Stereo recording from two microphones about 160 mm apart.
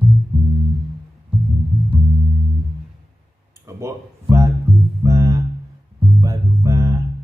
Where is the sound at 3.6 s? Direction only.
20° right (ahead or behind).